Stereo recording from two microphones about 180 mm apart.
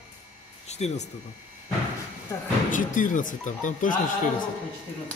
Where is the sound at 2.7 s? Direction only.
45° left (ahead or behind).